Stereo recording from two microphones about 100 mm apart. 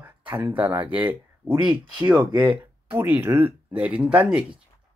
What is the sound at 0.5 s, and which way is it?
Speech, 15° right (ahead or behind).